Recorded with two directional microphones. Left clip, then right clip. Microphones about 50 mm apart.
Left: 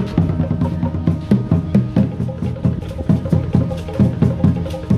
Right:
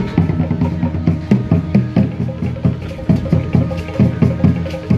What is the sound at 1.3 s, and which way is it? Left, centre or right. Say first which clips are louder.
Music: right 1 dB; left.